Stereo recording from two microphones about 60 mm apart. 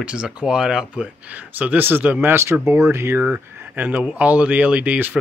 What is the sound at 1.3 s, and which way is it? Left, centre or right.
Speech, right.